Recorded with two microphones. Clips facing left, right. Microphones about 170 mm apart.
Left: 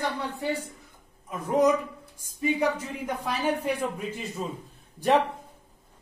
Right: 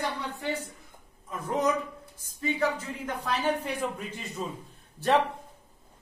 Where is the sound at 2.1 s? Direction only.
15° left (ahead or behind).